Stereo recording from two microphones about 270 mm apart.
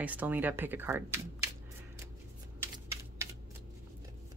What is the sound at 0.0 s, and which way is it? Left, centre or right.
Speech, centre.